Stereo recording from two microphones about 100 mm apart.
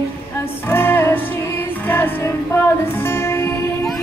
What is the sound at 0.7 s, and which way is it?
Music, 20° left (ahead or behind).